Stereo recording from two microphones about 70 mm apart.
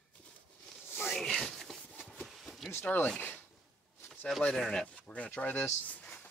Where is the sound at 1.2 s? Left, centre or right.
Centre.